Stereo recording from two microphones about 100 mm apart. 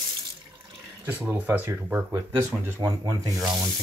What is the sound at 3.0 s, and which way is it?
Rub, 40° right (ahead or behind).